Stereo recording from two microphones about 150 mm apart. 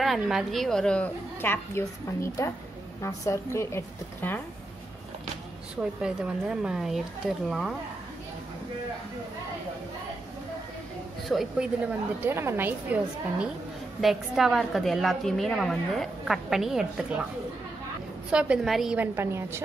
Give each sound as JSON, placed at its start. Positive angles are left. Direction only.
{"t": 0.0, "sound": "a woman's voice", "side_deg": 0}
{"t": 6.0, "sound": "a woman's voice", "side_deg": -5}
{"t": 11.2, "sound": "a woman's voice", "side_deg": -5}
{"t": 12.2, "sound": "a woman's voice", "side_deg": -15}
{"t": 18.3, "sound": "a woman's voice", "side_deg": -5}
{"t": 18.9, "sound": "a woman's voice", "side_deg": -15}